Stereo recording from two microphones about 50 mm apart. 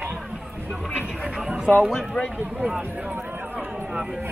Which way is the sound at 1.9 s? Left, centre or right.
Centre.